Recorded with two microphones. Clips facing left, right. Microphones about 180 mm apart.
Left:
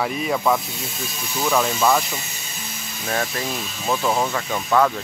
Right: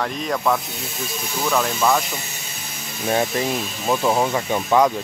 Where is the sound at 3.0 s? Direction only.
20° right (ahead or behind).